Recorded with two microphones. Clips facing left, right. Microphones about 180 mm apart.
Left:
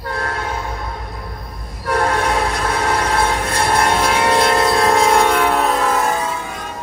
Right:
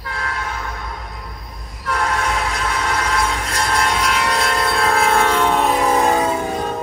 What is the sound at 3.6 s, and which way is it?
Train, 60° left (ahead or behind).